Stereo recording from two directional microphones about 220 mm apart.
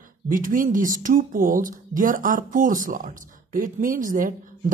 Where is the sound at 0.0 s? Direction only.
40° right (ahead or behind).